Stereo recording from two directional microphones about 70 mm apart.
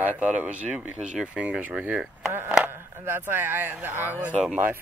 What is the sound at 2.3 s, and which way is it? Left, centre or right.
Speech, right.